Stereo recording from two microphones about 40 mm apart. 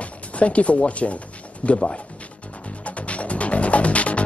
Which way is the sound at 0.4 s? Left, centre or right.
Left.